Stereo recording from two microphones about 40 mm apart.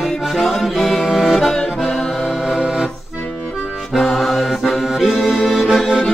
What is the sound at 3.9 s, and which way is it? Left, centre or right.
Music, centre.